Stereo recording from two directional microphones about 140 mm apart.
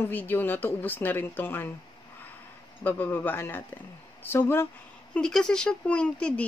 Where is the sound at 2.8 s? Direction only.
15° left (ahead or behind).